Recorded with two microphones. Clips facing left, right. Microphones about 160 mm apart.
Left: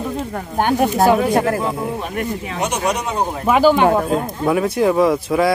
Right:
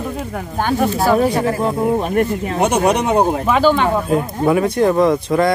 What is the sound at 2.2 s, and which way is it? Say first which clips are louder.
Speech: right 6 dB; 55° right (ahead or behind).